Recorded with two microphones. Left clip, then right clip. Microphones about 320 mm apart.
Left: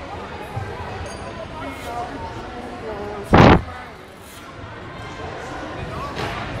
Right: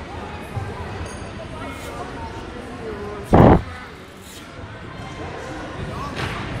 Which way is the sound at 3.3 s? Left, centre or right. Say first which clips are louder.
Left 1 dB; right.